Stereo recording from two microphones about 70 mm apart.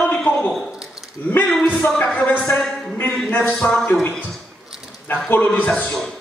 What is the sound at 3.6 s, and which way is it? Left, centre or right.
Speech, left.